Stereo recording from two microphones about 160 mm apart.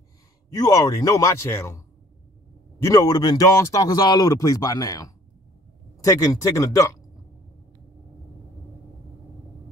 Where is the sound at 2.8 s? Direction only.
20° left (ahead or behind).